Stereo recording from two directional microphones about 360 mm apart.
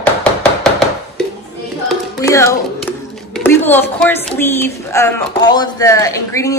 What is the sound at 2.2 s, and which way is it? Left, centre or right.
A woman's voice, centre.